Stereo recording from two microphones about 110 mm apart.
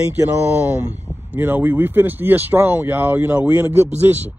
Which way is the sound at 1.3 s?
15° right (ahead or behind).